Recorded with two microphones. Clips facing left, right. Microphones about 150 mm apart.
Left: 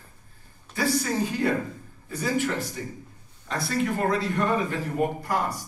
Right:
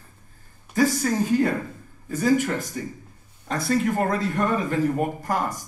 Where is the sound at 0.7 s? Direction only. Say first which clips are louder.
Right 4 dB; 45° right (ahead or behind).